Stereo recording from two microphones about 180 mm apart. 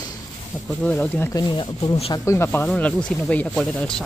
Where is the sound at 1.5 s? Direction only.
25° left (ahead or behind); by 4.0 s 5° left (ahead or behind).